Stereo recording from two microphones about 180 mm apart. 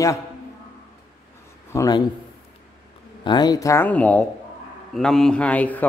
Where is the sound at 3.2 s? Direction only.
25° left (ahead or behind); by 5.8 s 10° left (ahead or behind).